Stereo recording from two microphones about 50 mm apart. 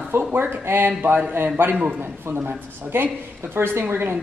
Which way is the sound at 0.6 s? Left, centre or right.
Right.